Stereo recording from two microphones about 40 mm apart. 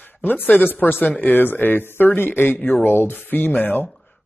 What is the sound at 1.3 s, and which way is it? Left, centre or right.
Speech, left.